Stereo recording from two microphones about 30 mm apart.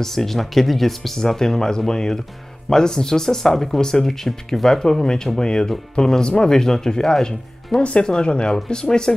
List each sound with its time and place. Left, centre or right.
0.0 s speech: centre
5.0 s speech: left
6.5 s speech: centre